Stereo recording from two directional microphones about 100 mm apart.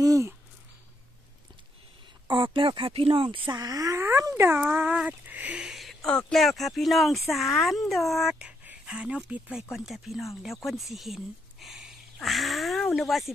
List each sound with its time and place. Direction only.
0.0 s speech: 35° right (ahead or behind)
2.2 s speech: 55° right (ahead or behind); by 11.1 s centre (ahead or behind)
11.6 s a sound: centre (ahead or behind)